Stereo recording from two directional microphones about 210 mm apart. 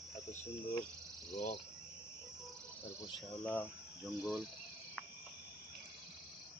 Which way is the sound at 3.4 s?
10° left (ahead or behind).